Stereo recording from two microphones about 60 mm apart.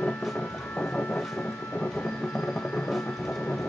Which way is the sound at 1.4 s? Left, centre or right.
Centre.